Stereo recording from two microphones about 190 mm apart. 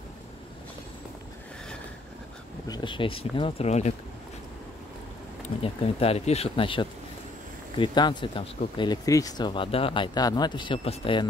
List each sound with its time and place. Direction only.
2.7 s speech: 25° left (ahead or behind)
5.6 s speech: 30° left (ahead or behind)